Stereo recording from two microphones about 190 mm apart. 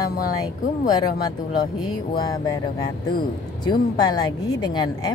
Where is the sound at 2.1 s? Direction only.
20° left (ahead or behind).